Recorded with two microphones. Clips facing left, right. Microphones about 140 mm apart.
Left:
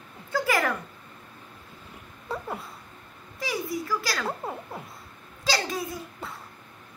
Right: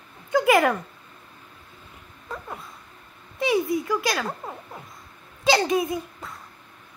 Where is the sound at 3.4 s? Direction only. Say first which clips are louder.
Right 8 dB; 25° right (ahead or behind).